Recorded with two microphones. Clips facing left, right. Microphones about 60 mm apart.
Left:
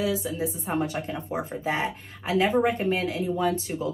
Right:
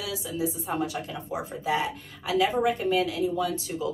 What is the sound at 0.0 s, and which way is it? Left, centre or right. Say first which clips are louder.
Speech: left 4 dB; left.